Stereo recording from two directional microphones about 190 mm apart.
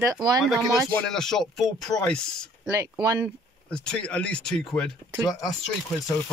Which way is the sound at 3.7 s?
5° left (ahead or behind).